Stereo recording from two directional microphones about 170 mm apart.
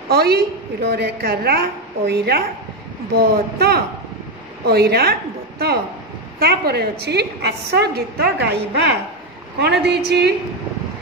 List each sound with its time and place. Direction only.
0.1 s a woman's voice: 65° right (ahead or behind)
6.4 s a woman's voice: 70° right (ahead or behind)